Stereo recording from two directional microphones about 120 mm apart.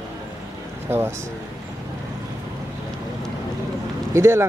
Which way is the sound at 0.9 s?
20° right (ahead or behind).